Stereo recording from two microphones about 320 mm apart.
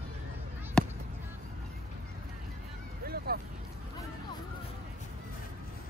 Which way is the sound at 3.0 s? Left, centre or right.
Right.